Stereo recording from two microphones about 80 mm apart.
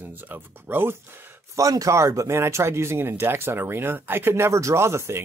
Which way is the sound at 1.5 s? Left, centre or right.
Right.